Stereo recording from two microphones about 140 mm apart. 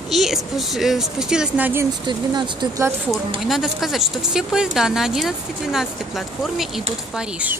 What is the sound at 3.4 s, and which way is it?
Speech, centre (ahead or behind).